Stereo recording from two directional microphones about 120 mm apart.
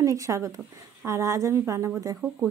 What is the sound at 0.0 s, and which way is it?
A woman's voice, 25° right (ahead or behind).